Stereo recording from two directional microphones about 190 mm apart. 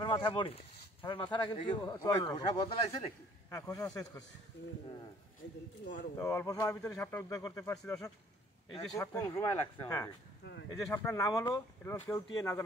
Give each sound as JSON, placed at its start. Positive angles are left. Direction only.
{"t": 0.0, "sound": "speech", "side_deg": 25}
{"t": 6.1, "sound": "speech", "side_deg": 15}